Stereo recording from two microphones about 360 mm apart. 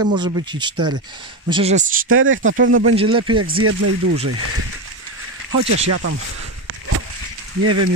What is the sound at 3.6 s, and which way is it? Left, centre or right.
Speech, right.